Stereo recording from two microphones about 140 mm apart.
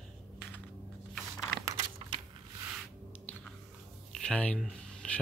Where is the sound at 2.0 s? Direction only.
45° right (ahead or behind).